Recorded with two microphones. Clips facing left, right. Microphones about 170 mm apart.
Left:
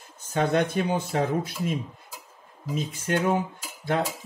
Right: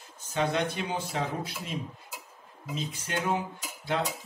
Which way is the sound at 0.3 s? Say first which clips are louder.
Left 5 dB; 50° left (ahead or behind).